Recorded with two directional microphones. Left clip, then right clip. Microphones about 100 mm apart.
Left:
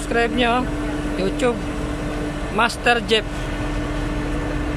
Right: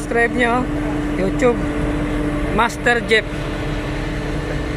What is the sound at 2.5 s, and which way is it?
Speech, 20° left (ahead or behind).